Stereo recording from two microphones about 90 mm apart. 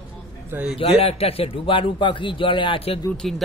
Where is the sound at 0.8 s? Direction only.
90° left; by 2.8 s 70° left (ahead or behind).